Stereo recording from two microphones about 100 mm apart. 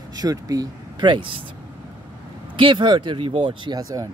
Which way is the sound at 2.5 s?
55° right (ahead or behind).